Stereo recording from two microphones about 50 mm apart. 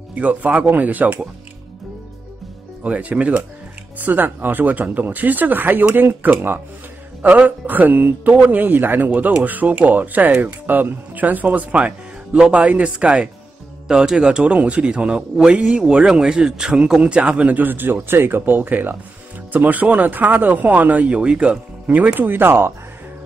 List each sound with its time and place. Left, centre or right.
0.1 s speech: right
2.8 s a man's voice: right
7.2 s a man's voice: right